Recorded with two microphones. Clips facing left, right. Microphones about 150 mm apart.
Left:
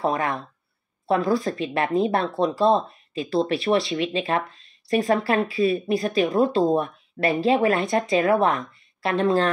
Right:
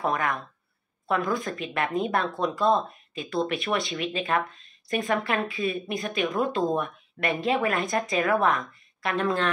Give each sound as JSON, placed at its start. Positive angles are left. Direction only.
{"t": 0.0, "sound": "speech", "side_deg": 30}